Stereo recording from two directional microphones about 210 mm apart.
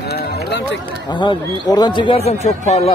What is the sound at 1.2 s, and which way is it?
Speech, 20° left (ahead or behind).